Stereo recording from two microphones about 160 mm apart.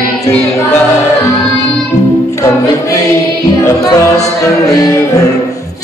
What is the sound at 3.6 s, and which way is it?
Music, 20° left (ahead or behind).